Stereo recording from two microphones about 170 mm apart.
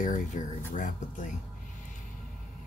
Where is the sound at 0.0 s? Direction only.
50° left (ahead or behind).